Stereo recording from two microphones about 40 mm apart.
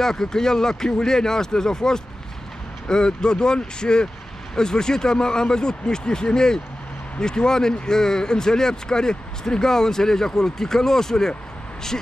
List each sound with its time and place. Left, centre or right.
0.0 s speech: centre
11.9 s speech: left